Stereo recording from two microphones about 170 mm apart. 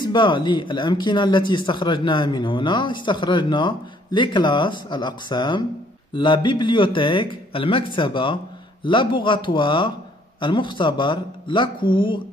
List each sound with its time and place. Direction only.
0.0 s speech: 25° left (ahead or behind)